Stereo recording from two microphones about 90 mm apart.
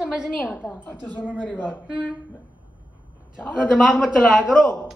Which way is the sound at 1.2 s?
15° right (ahead or behind).